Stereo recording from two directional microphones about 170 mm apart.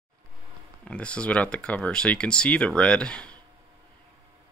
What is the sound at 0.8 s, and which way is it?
Speech, 5° left (ahead or behind).